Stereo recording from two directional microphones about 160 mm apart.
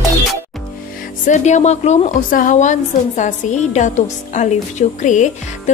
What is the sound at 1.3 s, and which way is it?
Speech, 45° left (ahead or behind).